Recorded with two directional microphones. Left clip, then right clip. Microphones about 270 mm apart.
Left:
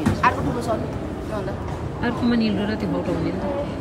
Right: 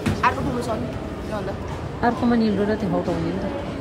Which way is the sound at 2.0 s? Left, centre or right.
Centre.